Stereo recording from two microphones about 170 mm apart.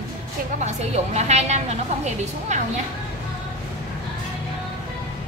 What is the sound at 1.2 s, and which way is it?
A woman's voice, 40° right (ahead or behind).